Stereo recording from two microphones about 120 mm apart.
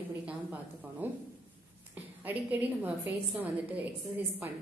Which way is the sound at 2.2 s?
15° right (ahead or behind).